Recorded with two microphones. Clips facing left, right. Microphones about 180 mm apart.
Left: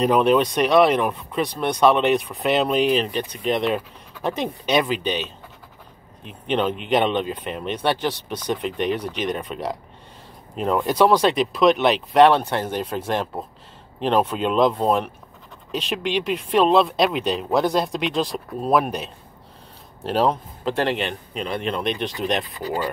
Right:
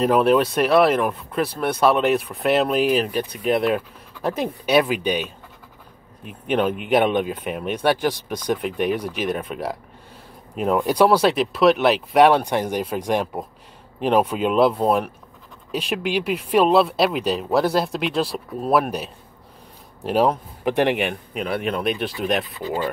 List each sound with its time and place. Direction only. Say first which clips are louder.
0.0 s speech: even; centre (ahead or behind)